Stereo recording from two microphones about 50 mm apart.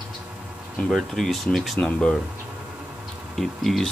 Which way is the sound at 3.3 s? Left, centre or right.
Centre.